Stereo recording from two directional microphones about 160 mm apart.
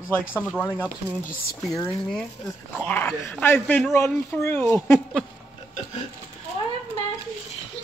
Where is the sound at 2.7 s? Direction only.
10° left (ahead or behind).